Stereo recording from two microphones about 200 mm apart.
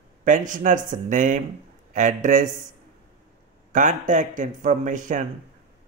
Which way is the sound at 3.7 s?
40° right (ahead or behind).